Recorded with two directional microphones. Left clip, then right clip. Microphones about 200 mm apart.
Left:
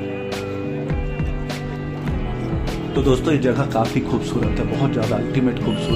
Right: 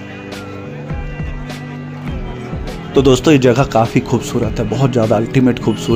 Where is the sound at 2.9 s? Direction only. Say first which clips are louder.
Right 9 dB; 40° right (ahead or behind).